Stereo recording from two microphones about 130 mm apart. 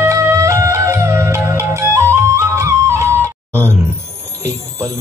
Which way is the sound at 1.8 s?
20° right (ahead or behind).